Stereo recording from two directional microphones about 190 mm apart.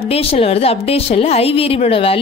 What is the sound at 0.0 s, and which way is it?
A woman's voice, 30° left (ahead or behind).